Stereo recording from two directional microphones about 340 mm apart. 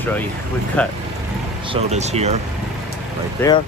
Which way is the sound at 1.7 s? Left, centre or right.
Centre.